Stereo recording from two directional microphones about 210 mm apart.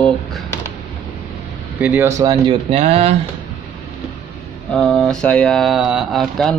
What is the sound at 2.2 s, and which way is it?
Speech, 20° right (ahead or behind).